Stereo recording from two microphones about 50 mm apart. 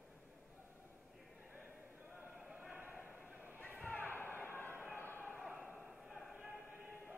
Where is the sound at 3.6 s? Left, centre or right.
Left.